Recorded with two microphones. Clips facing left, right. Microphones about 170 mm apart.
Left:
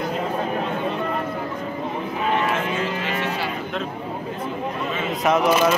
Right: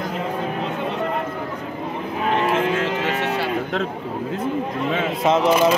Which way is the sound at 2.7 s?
75° right (ahead or behind).